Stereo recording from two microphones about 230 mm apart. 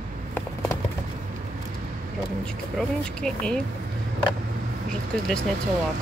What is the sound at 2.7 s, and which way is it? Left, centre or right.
Speech, centre.